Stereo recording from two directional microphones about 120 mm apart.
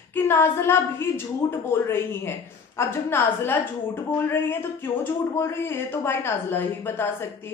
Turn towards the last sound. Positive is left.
turn(degrees=20)  # may be behind; listen again after turning